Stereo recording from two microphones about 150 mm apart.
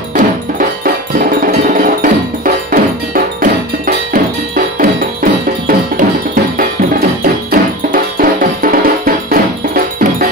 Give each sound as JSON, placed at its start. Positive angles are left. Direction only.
{"t": 0.1, "sound": "music", "side_deg": -70}
{"t": 3.3, "sound": "cowbell", "side_deg": -65}
{"t": 4.7, "sound": "music", "side_deg": -70}
{"t": 7.5, "sound": "music", "side_deg": -70}